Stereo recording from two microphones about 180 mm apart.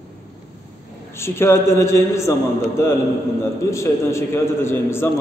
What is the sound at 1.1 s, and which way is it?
A man's voice, 15° left (ahead or behind).